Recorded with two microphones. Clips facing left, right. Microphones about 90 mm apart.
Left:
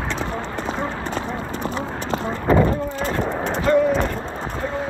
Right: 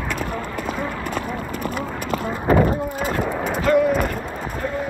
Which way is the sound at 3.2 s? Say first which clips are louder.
Even; 5° right (ahead or behind).